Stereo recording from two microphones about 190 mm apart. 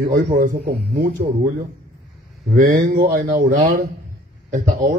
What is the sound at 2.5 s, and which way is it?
Speech, 55° right (ahead or behind).